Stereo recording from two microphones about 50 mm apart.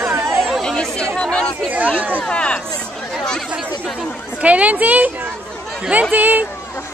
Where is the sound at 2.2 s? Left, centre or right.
Left.